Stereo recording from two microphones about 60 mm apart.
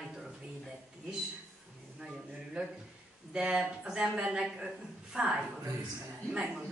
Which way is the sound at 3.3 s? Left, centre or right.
Centre.